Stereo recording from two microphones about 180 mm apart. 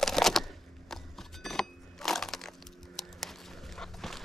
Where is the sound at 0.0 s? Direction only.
Centre (ahead or behind).